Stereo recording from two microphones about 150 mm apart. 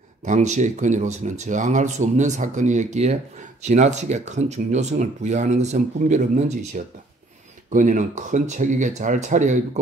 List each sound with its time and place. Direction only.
0.2 s speech: 55° right (ahead or behind)